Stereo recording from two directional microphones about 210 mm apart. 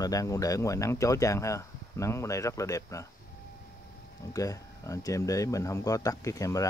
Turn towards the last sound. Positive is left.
turn(degrees=15)  # may be behind; listen again after turning